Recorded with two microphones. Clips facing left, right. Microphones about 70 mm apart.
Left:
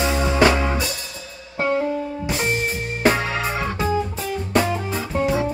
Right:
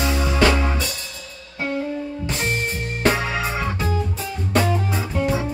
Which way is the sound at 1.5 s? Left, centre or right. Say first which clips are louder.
Left 5 dB; left.